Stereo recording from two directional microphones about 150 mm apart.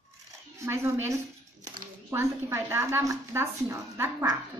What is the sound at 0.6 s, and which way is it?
A woman's voice, 15° right (ahead or behind).